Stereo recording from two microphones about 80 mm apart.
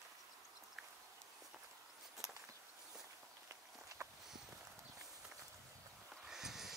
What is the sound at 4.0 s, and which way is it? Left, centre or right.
Walk, right.